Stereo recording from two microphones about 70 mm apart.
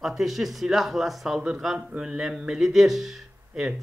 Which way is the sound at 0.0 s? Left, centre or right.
Centre.